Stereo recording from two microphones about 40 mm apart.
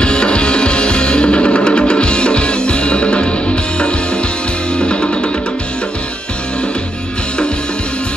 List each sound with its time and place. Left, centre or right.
0.0 s music: left